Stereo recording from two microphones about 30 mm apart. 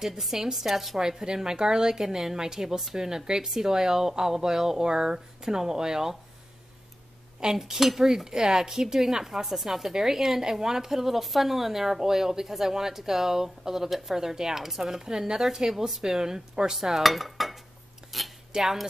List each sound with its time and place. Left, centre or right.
0.2 s speech: centre
0.9 s a woman's voice: right
7.5 s a woman's voice: centre
17.0 s dishes: centre
18.1 s cutlery: centre
18.6 s speech: centre